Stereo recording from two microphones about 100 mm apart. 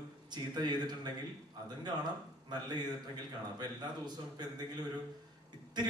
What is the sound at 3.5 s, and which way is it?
Speech, 45° right (ahead or behind).